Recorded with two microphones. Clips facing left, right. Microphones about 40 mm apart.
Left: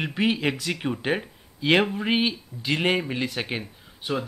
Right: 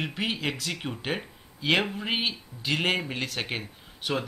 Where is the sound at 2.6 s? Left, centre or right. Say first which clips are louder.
Left 3 dB; centre.